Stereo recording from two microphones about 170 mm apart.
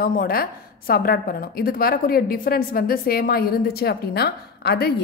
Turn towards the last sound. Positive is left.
turn(degrees=70)  # may be behind; listen again after turning